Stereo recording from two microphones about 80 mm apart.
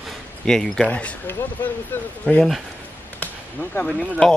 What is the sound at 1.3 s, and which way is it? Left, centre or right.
Speech, left.